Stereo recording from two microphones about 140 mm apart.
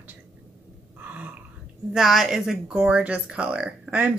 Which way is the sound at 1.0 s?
10° right (ahead or behind).